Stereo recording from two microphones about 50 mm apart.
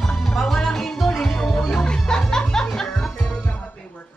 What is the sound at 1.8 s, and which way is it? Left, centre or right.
Music, centre.